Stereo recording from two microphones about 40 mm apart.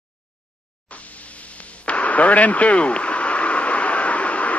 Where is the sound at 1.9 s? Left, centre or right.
Left.